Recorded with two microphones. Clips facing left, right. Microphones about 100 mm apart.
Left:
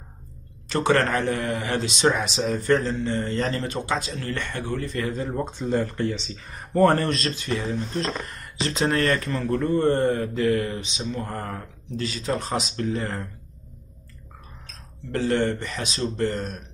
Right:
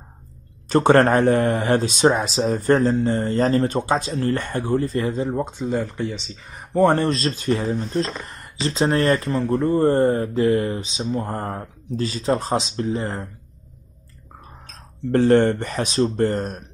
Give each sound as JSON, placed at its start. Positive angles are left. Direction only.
{"t": 0.7, "sound": "a man's voice", "side_deg": -45}
{"t": 7.0, "sound": "speech", "side_deg": -30}
{"t": 15.0, "sound": "speech", "side_deg": -50}